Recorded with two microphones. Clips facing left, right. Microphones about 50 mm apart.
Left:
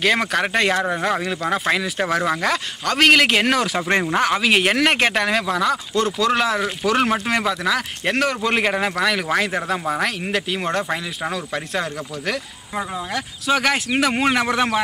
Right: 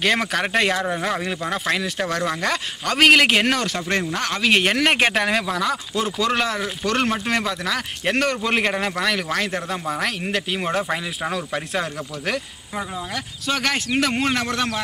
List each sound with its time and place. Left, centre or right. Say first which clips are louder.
0.0 s speech: left 2 dB; centre
3.9 s speech: left 6 dB; left
4.3 s a man's voice: left 1 dB; centre